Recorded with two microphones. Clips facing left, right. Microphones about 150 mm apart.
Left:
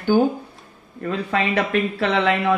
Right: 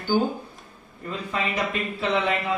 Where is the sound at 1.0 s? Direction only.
70° left (ahead or behind).